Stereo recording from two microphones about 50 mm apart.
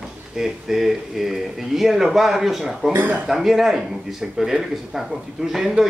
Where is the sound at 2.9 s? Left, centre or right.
Right.